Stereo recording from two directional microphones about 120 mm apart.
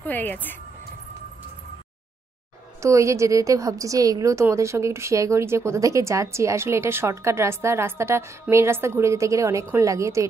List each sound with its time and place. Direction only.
0.0 s speech: 15° left (ahead or behind)
2.8 s a woman's voice: 25° right (ahead or behind)